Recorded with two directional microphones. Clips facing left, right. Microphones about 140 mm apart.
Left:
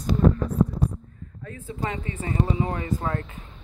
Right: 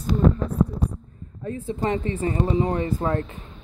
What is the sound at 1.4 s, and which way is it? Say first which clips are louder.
Speech: right 6 dB; 30° right (ahead or behind).